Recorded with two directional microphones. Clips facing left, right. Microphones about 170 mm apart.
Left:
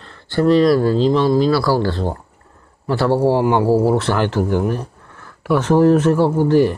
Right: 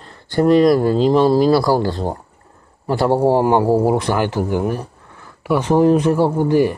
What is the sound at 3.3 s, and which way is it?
Speech, 45° right (ahead or behind).